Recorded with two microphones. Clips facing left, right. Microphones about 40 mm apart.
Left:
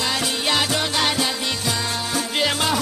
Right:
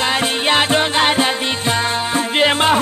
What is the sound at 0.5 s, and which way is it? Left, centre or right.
Music, right.